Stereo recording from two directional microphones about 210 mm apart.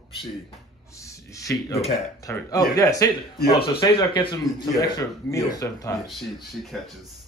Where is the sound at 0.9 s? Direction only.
15° left (ahead or behind).